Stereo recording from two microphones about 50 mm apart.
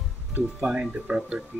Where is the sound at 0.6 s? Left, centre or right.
Right.